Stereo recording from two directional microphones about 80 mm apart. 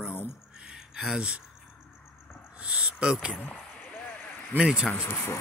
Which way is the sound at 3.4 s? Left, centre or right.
Left.